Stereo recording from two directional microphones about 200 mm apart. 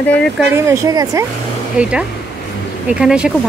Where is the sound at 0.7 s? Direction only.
15° right (ahead or behind).